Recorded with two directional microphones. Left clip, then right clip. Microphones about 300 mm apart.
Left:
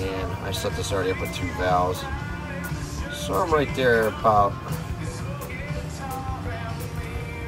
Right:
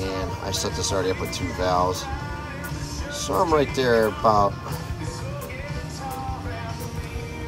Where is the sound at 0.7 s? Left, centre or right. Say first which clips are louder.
Right 2 dB; right.